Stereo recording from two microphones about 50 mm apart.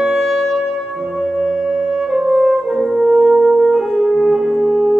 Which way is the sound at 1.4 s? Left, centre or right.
Centre.